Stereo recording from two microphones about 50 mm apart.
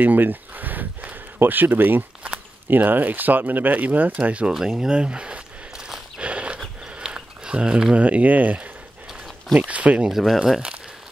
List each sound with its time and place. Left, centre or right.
0.0 s a sound: right
2.7 s speech: right
4.5 s speech: centre
6.2 s horse: right
7.0 s a sound: centre
7.9 s speech: right
10.0 s speech: centre